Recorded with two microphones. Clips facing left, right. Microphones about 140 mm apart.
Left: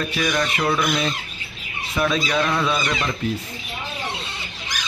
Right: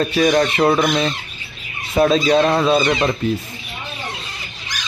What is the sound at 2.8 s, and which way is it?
Speech, 60° right (ahead or behind).